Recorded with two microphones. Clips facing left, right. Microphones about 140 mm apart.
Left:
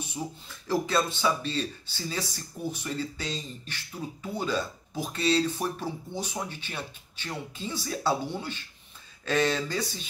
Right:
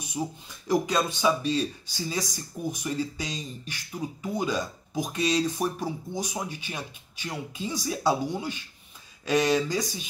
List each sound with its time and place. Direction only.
0.2 s speech: 15° right (ahead or behind)